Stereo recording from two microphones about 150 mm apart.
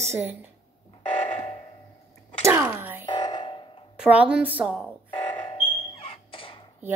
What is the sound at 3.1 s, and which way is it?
Music, 30° left (ahead or behind).